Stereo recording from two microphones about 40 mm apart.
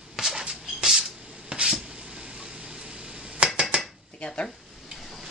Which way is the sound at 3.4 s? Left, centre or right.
Right.